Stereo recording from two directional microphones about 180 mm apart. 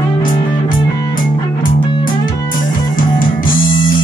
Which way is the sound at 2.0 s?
50° left (ahead or behind).